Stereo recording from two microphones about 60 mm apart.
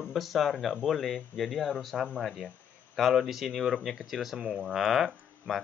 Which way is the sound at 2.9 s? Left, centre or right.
Centre.